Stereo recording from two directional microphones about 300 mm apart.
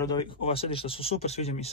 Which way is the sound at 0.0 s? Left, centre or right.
Centre.